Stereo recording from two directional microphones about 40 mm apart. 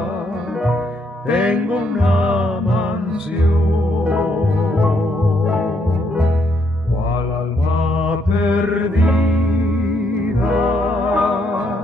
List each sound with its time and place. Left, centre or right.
1.3 s music: right
2.4 s music: centre
4.0 s music: right
8.0 s mantra: right
9.1 s music: centre
10.6 s music: right